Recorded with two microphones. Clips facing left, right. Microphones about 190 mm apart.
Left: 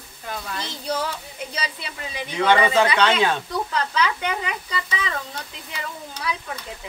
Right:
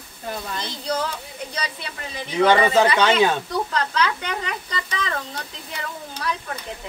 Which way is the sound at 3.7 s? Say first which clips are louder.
Left 1 dB; 10° left (ahead or behind).